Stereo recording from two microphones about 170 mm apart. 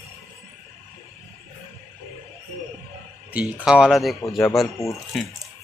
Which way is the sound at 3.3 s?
5° right (ahead or behind).